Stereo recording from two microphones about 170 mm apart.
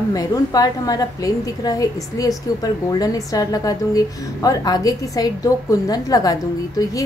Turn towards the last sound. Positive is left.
turn(degrees=20)  # may be behind; listen again after turning